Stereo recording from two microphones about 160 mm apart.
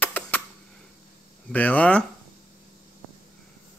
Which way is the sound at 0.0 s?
10° left (ahead or behind).